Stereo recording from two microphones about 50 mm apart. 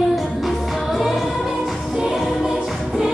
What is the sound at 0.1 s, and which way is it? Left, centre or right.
Music, centre.